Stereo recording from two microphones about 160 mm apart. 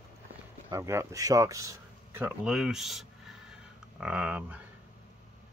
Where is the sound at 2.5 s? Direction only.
5° right (ahead or behind).